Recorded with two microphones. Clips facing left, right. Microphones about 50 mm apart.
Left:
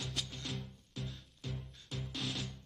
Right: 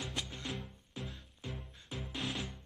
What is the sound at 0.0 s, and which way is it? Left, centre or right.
Music, centre.